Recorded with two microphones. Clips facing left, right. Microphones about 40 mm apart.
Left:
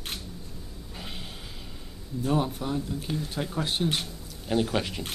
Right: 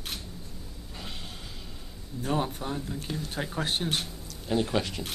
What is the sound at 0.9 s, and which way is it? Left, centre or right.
Snort, centre.